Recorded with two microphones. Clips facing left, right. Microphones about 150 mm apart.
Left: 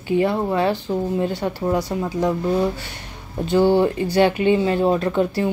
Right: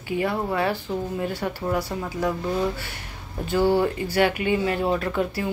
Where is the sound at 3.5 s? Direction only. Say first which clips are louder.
Left 4 dB; 25° left (ahead or behind).